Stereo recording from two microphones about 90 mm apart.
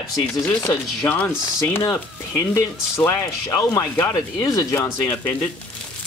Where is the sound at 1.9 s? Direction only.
35° left (ahead or behind).